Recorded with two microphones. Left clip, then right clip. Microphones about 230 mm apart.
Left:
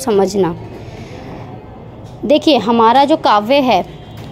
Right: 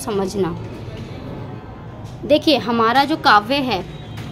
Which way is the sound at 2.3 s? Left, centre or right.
Left.